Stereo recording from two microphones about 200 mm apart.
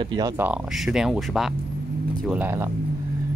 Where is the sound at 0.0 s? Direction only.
20° right (ahead or behind).